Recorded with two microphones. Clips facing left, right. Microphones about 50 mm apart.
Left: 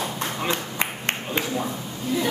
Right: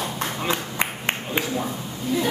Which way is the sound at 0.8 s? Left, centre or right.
Centre.